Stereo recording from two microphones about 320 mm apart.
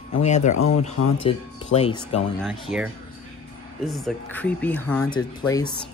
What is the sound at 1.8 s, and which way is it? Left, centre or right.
Speech, centre.